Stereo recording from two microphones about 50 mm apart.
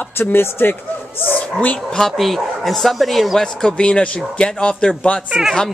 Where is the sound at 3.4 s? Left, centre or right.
Centre.